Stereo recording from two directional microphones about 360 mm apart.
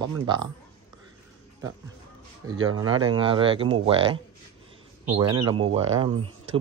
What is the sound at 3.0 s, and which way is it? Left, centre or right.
Speech, centre.